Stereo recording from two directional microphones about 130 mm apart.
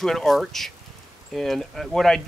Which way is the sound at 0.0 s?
Centre (ahead or behind).